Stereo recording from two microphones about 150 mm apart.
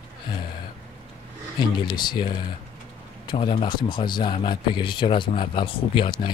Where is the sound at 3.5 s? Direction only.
30° left (ahead or behind).